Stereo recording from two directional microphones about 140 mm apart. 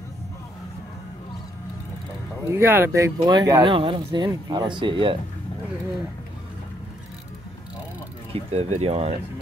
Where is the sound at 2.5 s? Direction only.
15° right (ahead or behind).